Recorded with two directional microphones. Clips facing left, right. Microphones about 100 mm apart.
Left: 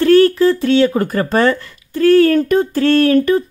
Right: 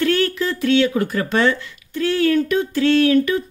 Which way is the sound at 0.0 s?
40° left (ahead or behind).